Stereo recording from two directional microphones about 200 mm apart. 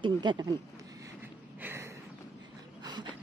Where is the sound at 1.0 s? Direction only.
10° right (ahead or behind).